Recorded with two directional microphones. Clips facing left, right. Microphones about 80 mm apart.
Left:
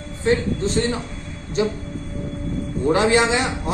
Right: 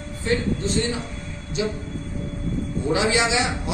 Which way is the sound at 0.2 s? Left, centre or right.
Left.